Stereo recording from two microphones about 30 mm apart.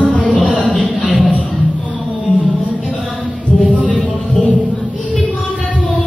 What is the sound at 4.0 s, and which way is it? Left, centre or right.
Music, centre.